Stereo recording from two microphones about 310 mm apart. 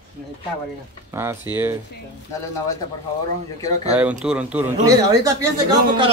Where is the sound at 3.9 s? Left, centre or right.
Centre.